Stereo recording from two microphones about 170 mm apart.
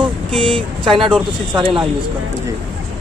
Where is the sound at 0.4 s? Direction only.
30° right (ahead or behind).